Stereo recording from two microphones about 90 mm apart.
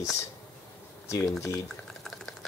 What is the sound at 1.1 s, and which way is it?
Speech, 35° left (ahead or behind).